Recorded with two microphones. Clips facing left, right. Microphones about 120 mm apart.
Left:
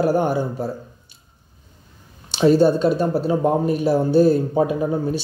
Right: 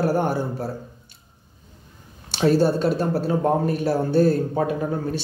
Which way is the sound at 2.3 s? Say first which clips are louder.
Left 4 dB; 20° left (ahead or behind).